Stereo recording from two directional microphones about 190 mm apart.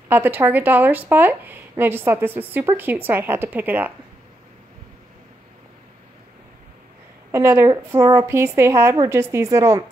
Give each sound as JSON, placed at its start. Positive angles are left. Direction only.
{"t": 0.1, "sound": "a woman's voice", "side_deg": -10}
{"t": 7.2, "sound": "a woman's voice", "side_deg": -15}